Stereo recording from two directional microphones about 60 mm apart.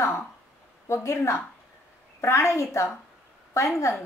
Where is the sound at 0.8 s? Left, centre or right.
Left.